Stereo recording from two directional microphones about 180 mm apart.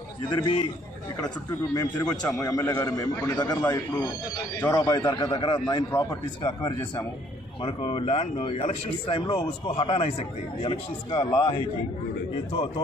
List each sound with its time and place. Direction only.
0.3 s a man's voice: 25° left (ahead or behind)
2.0 s a man's voice: 5° left (ahead or behind)
2.4 s a man's voice: 20° left (ahead or behind)